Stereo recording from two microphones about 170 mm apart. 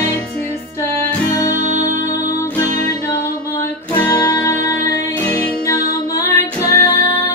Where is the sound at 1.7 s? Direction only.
40° right (ahead or behind).